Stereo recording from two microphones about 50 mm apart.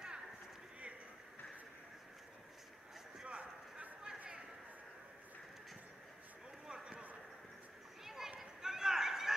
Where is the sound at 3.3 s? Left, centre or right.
Right.